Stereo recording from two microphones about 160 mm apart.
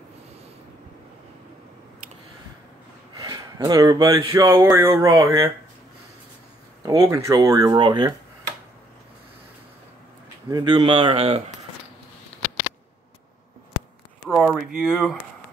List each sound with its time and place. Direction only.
3.2 s speech: 25° right (ahead or behind)
6.8 s speech: 20° right (ahead or behind)
10.5 s speech: 30° right (ahead or behind)
14.3 s speech: 5° right (ahead or behind)